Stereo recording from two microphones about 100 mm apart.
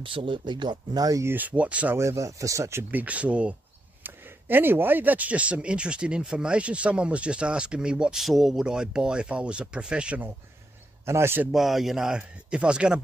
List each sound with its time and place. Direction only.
0.0 s speech: 60° right (ahead or behind); by 1.2 s 40° right (ahead or behind)
1.2 s speech: 20° right (ahead or behind)
2.0 s speech: 30° right (ahead or behind); by 10.3 s 15° right (ahead or behind)
11.1 s speech: 25° right (ahead or behind)
11.5 s speech: centre (ahead or behind)